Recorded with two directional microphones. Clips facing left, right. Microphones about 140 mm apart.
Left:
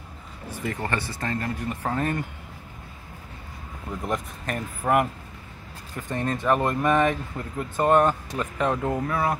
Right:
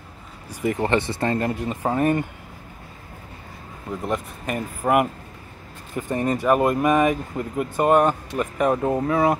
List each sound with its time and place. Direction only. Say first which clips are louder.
0.5 s speech: right 7 dB; 15° right (ahead or behind)
1.8 s speech: right 7 dB; 15° right (ahead or behind)
4.0 s speech: right 2 dB; 5° right (ahead or behind)
6.1 s speech: right 4 dB; 10° right (ahead or behind)